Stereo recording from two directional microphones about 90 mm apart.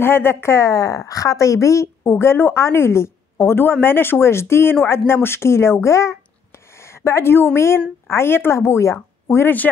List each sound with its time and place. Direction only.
0.0 s a woman's voice: 25° left (ahead or behind)